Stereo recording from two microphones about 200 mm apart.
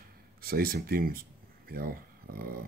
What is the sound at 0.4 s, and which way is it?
Speech, 50° right (ahead or behind).